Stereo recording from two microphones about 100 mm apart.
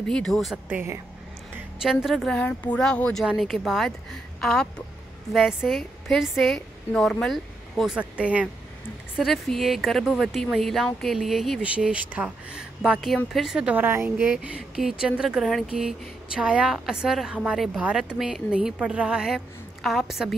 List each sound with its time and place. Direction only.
0.0 s speech: 5° left (ahead or behind)
0.7 s speech: 20° right (ahead or behind)
1.8 s speech: 5° right (ahead or behind)
2.3 s speech: 15° left (ahead or behind)
5.3 s speech: 5° right (ahead or behind)
9.1 s speech: centre (ahead or behind)
11.6 s a woman's voice: 10° right (ahead or behind)
13.7 s a woman's voice: 20° right (ahead or behind); by 20.3 s 5° right (ahead or behind)